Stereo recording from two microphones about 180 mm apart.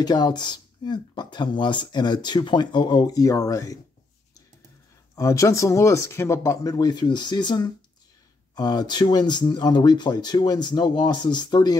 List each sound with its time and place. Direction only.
0.0 s speech: 25° left (ahead or behind)
5.1 s speech: 15° left (ahead or behind)